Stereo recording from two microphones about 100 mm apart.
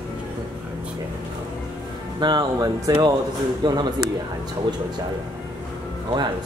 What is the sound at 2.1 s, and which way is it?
Speech, 45° right (ahead or behind).